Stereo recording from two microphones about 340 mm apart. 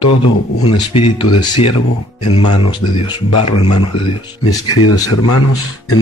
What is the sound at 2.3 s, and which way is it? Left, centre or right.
Speech, left.